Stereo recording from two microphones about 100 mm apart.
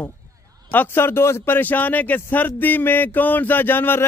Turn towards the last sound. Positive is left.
turn(degrees=20)  # may be behind; listen again after turning